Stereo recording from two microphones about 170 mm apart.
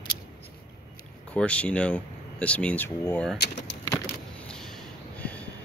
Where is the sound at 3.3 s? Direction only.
80° left.